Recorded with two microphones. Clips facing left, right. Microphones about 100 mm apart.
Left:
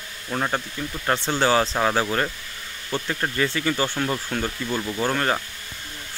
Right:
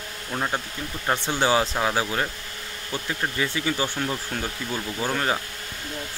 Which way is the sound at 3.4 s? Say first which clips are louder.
Left 3 dB; 10° right (ahead or behind).